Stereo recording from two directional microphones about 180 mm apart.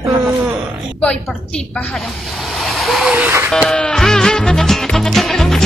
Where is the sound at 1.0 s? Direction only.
5° left (ahead or behind); by 3.5 s 10° right (ahead or behind).